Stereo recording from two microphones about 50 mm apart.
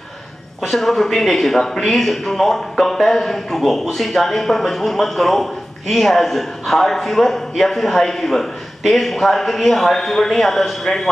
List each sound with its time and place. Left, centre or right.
0.6 s speech: centre